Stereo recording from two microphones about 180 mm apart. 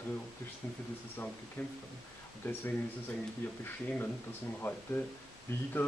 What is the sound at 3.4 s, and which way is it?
Speech, 10° left (ahead or behind).